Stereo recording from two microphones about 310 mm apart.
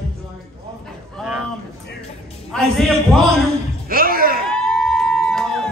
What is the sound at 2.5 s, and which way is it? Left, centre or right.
Speech, centre.